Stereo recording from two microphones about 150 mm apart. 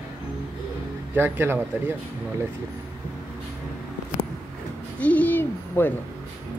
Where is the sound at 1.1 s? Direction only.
15° right (ahead or behind).